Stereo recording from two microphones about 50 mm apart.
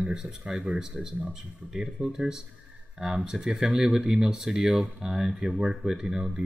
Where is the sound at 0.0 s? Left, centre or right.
Centre.